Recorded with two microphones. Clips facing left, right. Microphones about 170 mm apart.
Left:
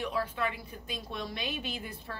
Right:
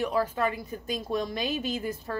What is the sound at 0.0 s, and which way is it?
A woman's voice, 40° right (ahead or behind).